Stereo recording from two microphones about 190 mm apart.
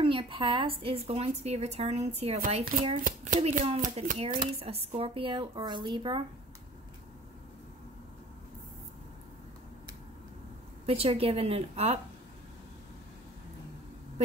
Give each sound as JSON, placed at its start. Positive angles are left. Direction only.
{"t": 0.0, "sound": "speech", "side_deg": -25}
{"t": 3.0, "sound": "speech", "side_deg": -45}
{"t": 10.9, "sound": "speech", "side_deg": -30}